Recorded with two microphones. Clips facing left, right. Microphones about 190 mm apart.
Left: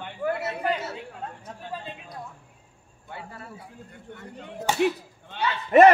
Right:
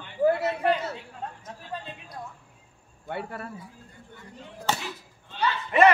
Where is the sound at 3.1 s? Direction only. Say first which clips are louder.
Right 7 dB; 65° right (ahead or behind).